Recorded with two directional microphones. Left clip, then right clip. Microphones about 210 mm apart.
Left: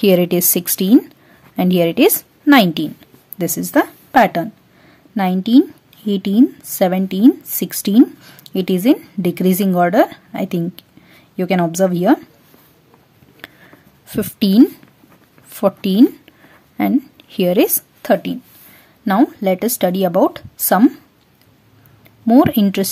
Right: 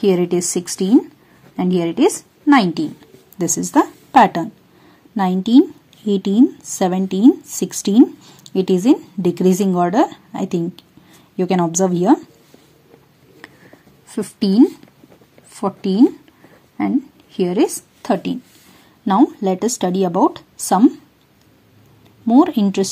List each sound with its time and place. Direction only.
0.0 s a woman's voice: 30° left (ahead or behind)
14.0 s a woman's voice: 30° left (ahead or behind)
22.2 s speech: 25° left (ahead or behind)